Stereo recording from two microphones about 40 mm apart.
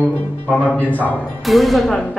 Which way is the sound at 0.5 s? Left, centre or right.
Left.